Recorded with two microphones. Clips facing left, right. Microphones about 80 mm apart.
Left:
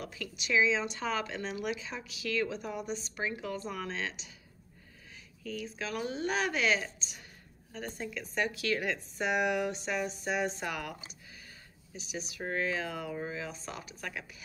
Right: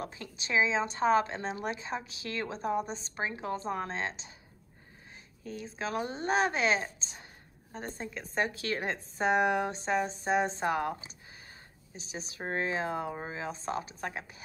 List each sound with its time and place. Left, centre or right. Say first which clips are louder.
0.0 s speech: right 1 dB; right
5.4 s speech: right 1 dB; right